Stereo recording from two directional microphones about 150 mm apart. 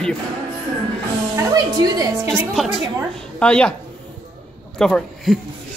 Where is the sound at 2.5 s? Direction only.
Centre (ahead or behind).